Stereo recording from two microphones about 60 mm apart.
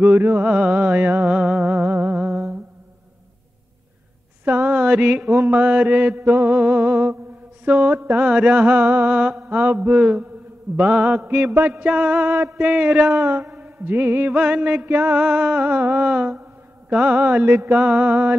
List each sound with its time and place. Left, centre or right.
0.0 s music: right
0.4 s mantra: right
1.3 s humming: centre
1.6 s music: right
4.5 s a sound: right
5.5 s mantra: right
11.2 s music: right
11.7 s mantra: right
13.2 s music: right
13.6 s mantra: right
14.3 s mantra: right
15.1 s mantra: right